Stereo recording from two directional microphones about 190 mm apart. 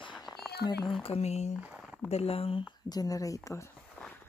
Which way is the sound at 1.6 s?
5° right (ahead or behind).